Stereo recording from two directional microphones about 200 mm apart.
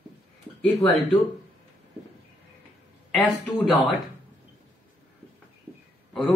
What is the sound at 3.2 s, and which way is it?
Speech, 5° left (ahead or behind).